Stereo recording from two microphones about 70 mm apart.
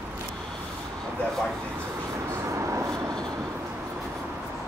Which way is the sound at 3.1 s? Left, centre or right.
Centre.